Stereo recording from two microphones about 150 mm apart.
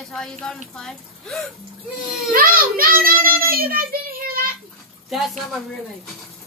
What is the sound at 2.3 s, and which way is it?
A child's voice, 75° right (ahead or behind).